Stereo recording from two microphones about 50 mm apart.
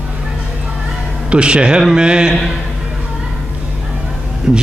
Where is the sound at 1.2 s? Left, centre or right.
Right.